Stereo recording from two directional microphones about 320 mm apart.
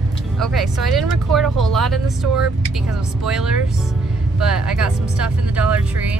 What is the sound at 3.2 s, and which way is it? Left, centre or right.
Speech, centre.